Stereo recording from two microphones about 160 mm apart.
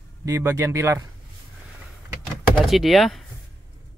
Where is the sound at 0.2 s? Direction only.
15° right (ahead or behind).